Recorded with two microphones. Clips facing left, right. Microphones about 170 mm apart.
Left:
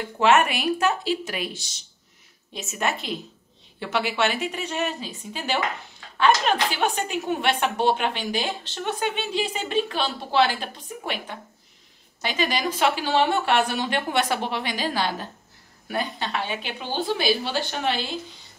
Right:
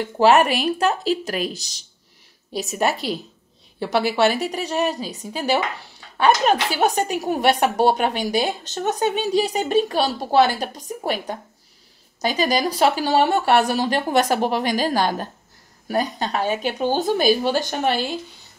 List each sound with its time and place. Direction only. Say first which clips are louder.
0.2 s a woman's voice: right 4 dB; 35° right (ahead or behind)